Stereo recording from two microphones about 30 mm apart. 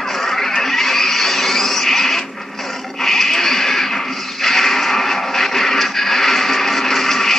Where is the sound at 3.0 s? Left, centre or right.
Centre.